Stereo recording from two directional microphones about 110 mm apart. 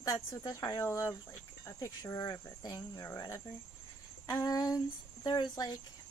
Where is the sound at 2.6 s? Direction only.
35° left (ahead or behind).